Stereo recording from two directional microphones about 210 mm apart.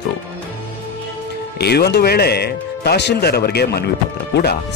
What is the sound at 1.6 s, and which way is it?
Speech, 50° left (ahead or behind).